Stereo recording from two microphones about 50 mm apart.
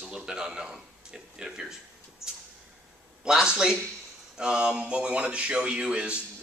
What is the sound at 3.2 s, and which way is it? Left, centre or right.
Speech, centre.